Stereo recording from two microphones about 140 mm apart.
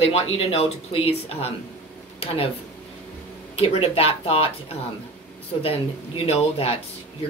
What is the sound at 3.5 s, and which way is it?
Speech, 45° left (ahead or behind).